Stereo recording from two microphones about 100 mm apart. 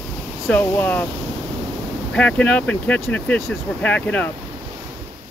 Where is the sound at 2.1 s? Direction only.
10° left (ahead or behind).